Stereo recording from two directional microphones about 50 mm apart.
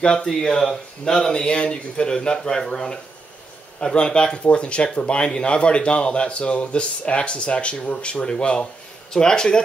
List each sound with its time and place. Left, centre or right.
0.0 s speech: centre